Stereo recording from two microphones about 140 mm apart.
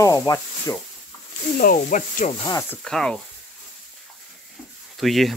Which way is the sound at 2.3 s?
30° left (ahead or behind).